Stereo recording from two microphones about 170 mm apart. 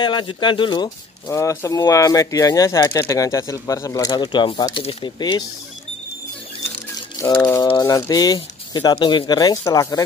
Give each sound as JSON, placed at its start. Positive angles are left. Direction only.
{"t": 0.0, "sound": "speech", "side_deg": 30}
{"t": 7.2, "sound": "speech", "side_deg": 20}